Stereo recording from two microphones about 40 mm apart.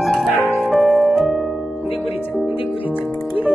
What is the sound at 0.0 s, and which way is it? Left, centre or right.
Music, centre.